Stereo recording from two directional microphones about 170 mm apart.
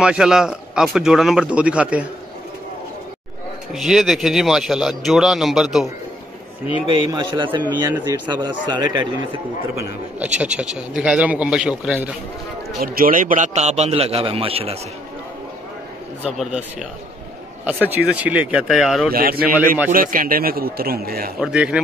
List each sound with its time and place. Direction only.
0.0 s a man's voice: 5° right (ahead or behind)
3.7 s a man's voice: centre (ahead or behind)
6.9 s a man's voice: 25° right (ahead or behind)
9.8 s a man's voice: 10° right (ahead or behind)
12.8 s a man's voice: 55° right (ahead or behind); by 14.8 s 35° right (ahead or behind)
16.3 s a man's voice: 5° right (ahead or behind)
17.9 s a man's voice: 10° right (ahead or behind)
19.1 s a man's voice: 60° right (ahead or behind)
21.4 s a man's voice: 5° right (ahead or behind)